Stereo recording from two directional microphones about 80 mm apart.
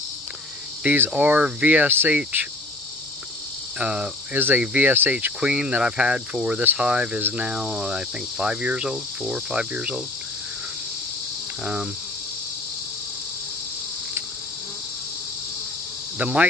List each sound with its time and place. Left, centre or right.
0.8 s speech: right
3.7 s cricket: centre
4.4 s speech: right
5.1 s speech: centre
11.6 s speech: centre
16.2 s speech: centre